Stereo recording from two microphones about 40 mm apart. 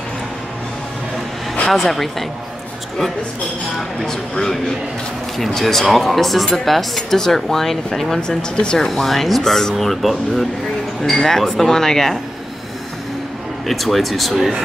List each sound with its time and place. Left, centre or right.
1.7 s speech: centre
4.0 s speech: centre
8.2 s speech: left
8.8 s speech: centre
13.7 s speech: centre